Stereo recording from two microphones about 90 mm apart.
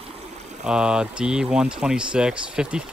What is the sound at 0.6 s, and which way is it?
Speech, 10° right (ahead or behind).